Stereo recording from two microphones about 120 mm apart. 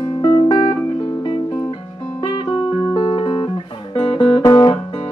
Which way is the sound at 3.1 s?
45° left (ahead or behind).